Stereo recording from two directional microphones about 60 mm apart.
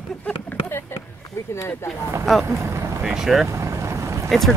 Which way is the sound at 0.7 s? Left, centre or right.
Left.